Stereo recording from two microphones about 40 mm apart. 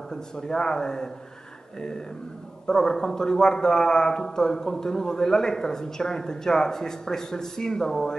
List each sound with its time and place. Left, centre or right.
0.1 s speech: centre